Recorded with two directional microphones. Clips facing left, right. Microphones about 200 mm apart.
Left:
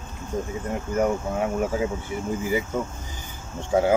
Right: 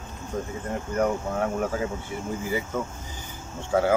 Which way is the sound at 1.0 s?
10° left (ahead or behind).